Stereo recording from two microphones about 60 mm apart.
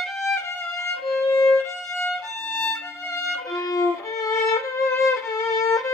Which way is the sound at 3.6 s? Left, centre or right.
Left.